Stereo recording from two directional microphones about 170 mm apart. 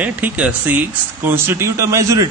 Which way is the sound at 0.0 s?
10° right (ahead or behind).